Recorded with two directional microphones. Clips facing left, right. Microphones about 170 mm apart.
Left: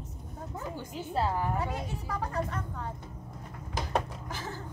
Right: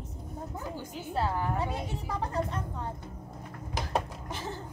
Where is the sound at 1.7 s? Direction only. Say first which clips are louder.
Right 1 dB; 20° right (ahead or behind).